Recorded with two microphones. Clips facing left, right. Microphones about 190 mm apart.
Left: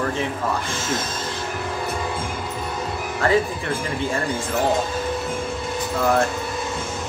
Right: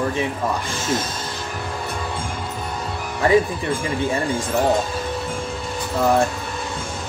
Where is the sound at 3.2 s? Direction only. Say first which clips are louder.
Right 3 dB; 15° right (ahead or behind).